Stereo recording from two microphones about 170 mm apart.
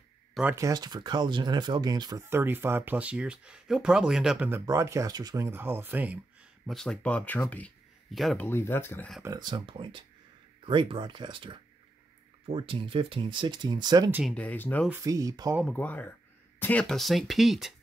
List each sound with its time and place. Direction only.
0.3 s a sound: 5° right (ahead or behind)
0.6 s speech: 20° right (ahead or behind)
6.6 s speech: centre (ahead or behind)
8.5 s speech: 15° left (ahead or behind)
9.2 s speech: 25° right (ahead or behind)
14.3 s speech: 10° left (ahead or behind)
14.9 s speech: 20° right (ahead or behind)
15.6 s speech: 10° left (ahead or behind)